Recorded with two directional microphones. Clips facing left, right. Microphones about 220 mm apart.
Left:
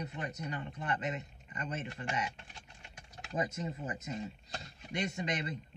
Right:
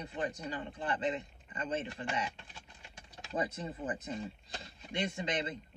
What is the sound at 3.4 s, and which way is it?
Speech, 35° right (ahead or behind).